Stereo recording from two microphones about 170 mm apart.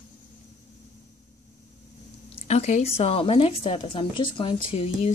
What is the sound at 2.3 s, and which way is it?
Speech, 40° left (ahead or behind).